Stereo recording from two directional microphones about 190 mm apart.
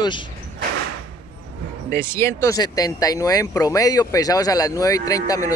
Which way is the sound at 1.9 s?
15° left (ahead or behind).